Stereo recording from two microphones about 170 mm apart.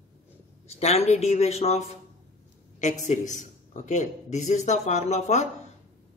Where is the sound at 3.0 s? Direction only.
45° left (ahead or behind).